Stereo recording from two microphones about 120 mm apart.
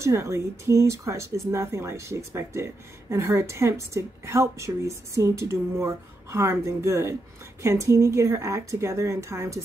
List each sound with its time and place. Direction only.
0.0 s speech: 25° right (ahead or behind)